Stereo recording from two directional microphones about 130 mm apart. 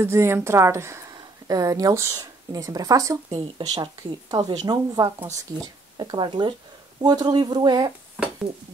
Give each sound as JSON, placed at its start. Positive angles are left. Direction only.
{"t": 0.0, "sound": "speech", "side_deg": -20}